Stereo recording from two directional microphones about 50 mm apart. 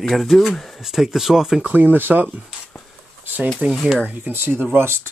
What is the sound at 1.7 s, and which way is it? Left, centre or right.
Speech, right.